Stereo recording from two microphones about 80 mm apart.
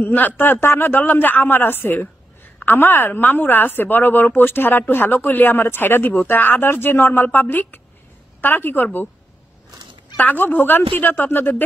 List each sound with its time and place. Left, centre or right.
0.0 s speech: left
10.1 s speech: left